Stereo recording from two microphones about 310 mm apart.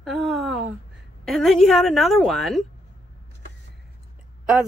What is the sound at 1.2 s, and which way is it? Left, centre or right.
A woman's voice, centre.